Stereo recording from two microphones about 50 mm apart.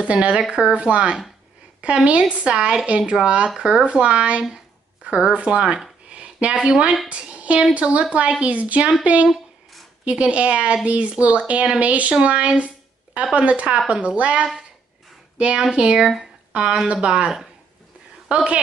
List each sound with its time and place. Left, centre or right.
0.0 s speech: right
6.0 s a sound: right
6.7 s speech: centre
7.1 s a woman's voice: right
18.3 s speech: right